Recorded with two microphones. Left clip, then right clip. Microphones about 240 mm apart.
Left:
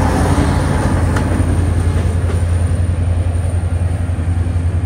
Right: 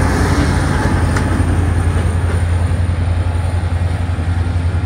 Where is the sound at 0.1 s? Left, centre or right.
Left.